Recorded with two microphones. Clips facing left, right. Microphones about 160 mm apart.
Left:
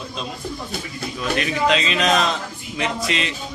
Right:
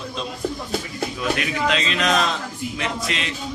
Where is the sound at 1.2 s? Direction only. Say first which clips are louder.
Left 3 dB; 5° right (ahead or behind).